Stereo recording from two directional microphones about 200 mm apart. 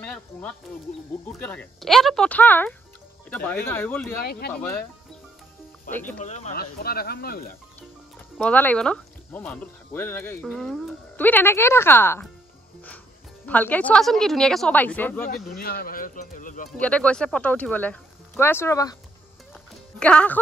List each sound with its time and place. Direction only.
0.0 s insect: 5° left (ahead or behind)
1.2 s speech: 10° left (ahead or behind)
4.2 s speech: 50° left (ahead or behind)
5.9 s speech: 10° left (ahead or behind)
6.2 s speech: 35° left (ahead or behind)
6.5 s speech: 50° left (ahead or behind)
8.4 s speech: 10° left (ahead or behind)
13.5 s speech: 10° left (ahead or behind)
15.5 s speech: 50° left (ahead or behind)
16.7 s speech: 5° left (ahead or behind)
20.0 s speech: 5° left (ahead or behind)